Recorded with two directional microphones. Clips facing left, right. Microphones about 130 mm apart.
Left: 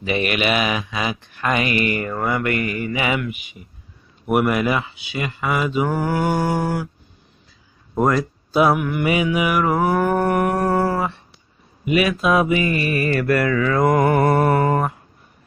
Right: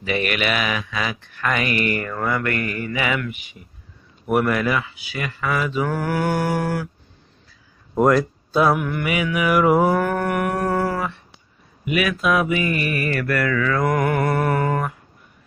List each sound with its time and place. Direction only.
0.0 s speech: 20° left (ahead or behind)
7.9 s speech: centre (ahead or behind)
9.0 s speech: 25° left (ahead or behind)
9.5 s mantra: 5° right (ahead or behind)
9.9 s speech: 15° left (ahead or behind)
10.2 s a sound: 30° left (ahead or behind)
11.8 s speech: 25° left (ahead or behind)